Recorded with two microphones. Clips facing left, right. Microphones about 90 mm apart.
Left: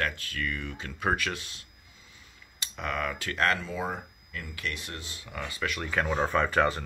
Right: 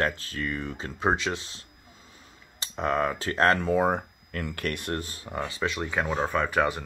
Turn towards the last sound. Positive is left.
turn(degrees=-10)  # may be behind; listen again after turning